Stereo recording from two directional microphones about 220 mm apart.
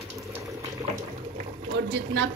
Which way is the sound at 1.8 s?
55° right (ahead or behind).